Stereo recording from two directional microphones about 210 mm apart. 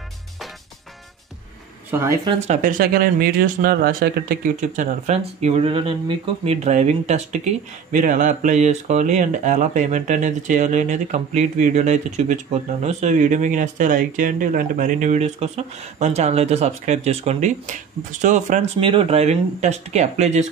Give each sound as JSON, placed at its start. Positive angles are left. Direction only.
{"t": 1.9, "sound": "speech", "side_deg": -15}
{"t": 2.4, "sound": "speech", "side_deg": -35}